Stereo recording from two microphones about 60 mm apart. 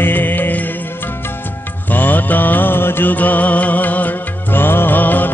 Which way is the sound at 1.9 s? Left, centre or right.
Left.